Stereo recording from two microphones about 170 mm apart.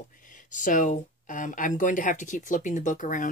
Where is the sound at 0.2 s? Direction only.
50° left (ahead or behind).